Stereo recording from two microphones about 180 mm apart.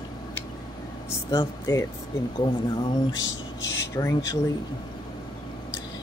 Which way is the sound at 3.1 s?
90° left.